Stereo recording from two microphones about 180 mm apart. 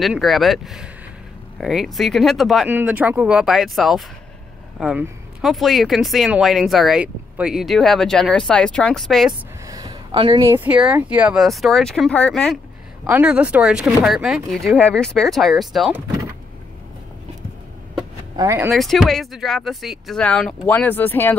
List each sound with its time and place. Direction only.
0.0 s speech: centre (ahead or behind)
9.7 s a sound: 20° right (ahead or behind)
10.4 s speech: 10° right (ahead or behind); by 12.5 s 5° left (ahead or behind)
13.0 s speech: 10° right (ahead or behind)
18.3 s speech: 15° right (ahead or behind)
18.7 s speech: centre (ahead or behind)